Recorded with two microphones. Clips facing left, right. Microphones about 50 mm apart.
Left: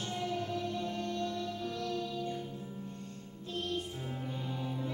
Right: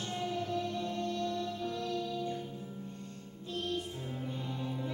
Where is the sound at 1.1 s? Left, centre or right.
Left.